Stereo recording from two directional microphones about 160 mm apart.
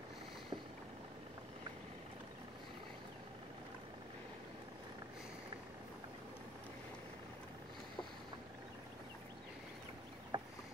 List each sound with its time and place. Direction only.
10.3 s boat: 30° right (ahead or behind)